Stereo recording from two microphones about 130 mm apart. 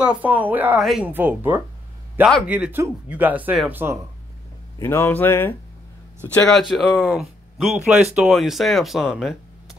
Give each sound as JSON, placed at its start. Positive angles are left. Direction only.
{"t": 0.0, "sound": "speech", "side_deg": -10}
{"t": 0.7, "sound": "speech", "side_deg": 0}
{"t": 1.0, "sound": "speech", "side_deg": -15}
{"t": 4.7, "sound": "speech", "side_deg": 20}
{"t": 6.3, "sound": "speech", "side_deg": 5}